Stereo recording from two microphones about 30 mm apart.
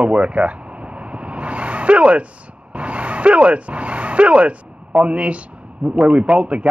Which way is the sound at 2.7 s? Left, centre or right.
Right.